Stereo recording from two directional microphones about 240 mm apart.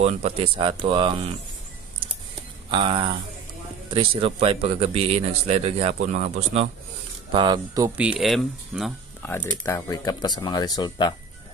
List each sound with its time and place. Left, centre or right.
0.0 s speech: right
2.7 s speech: centre
7.3 s speech: centre